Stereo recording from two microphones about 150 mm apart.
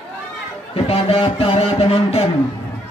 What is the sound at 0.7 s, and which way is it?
Speech, 40° left (ahead or behind).